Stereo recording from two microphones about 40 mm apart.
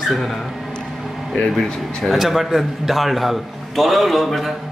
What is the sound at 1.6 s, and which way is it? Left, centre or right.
Speech, centre.